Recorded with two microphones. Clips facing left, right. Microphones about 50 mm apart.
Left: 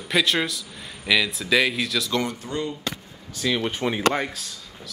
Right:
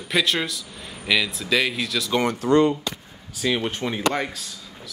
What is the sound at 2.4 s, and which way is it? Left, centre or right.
Speech, right.